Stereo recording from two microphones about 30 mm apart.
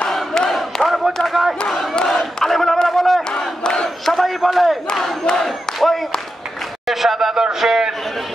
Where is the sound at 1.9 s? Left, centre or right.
Left.